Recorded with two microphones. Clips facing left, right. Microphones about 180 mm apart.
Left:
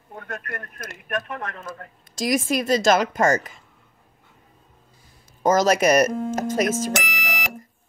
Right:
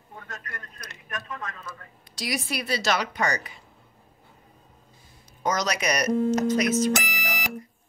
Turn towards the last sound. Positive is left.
turn(degrees=70)  # may be behind; listen again after turning